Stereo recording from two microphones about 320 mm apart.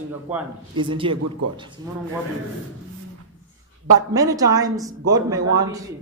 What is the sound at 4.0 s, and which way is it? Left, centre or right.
A man's voice, centre.